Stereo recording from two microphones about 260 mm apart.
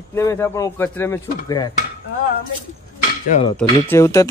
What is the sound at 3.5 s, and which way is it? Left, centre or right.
Speech, centre.